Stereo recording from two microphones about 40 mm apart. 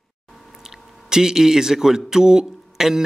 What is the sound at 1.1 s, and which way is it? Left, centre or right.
A man's voice, centre.